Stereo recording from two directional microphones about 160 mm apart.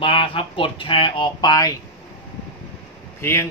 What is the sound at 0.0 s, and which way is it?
Speech, 35° left (ahead or behind).